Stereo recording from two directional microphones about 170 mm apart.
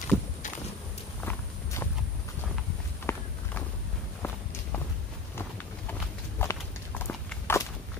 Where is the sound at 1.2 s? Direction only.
15° left (ahead or behind).